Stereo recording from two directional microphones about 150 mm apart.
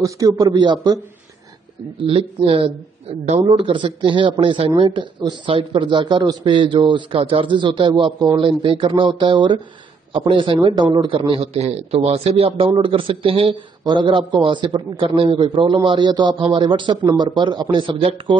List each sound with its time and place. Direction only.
0.0 s a man's voice: 25° right (ahead or behind)
2.0 s a man's voice: 35° right (ahead or behind)
3.5 s a man's voice: 35° right (ahead or behind)